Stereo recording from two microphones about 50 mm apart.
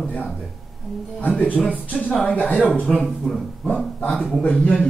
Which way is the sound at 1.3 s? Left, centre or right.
Left.